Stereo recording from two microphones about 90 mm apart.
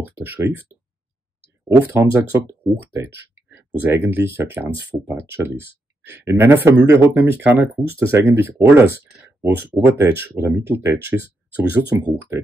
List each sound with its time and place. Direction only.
0.2 s speech: 20° right (ahead or behind)
2.0 s speech: 25° right (ahead or behind)